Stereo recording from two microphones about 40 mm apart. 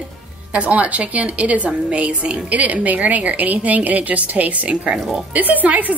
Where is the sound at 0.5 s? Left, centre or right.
Right.